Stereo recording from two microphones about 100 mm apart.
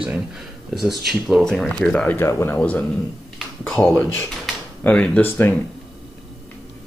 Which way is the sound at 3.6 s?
10° left (ahead or behind).